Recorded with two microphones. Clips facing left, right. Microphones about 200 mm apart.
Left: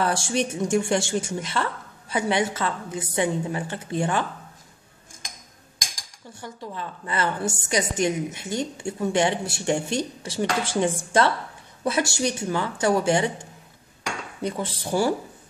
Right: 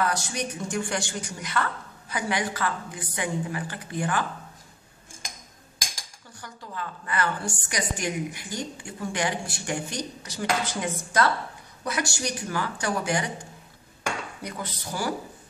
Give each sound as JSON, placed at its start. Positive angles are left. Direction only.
{"t": 0.0, "sound": "a woman's voice", "side_deg": 30}
{"t": 6.4, "sound": "a woman's voice", "side_deg": 25}